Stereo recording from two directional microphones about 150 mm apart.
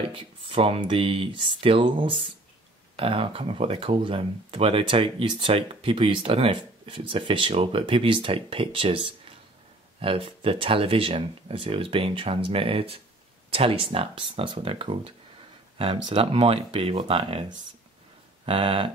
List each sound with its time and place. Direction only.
0.1 s speech: 35° right (ahead or behind)